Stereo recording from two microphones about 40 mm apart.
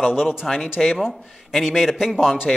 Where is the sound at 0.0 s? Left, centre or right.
Centre.